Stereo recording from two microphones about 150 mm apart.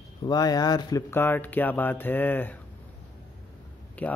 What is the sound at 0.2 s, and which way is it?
Speech, 25° left (ahead or behind).